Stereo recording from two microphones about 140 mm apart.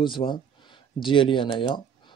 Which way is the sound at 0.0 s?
35° left (ahead or behind).